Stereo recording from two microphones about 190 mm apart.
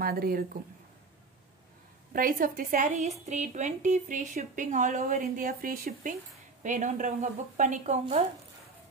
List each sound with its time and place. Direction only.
0.0 s a woman's voice: 50° right (ahead or behind)
2.1 s a woman's voice: 50° right (ahead or behind)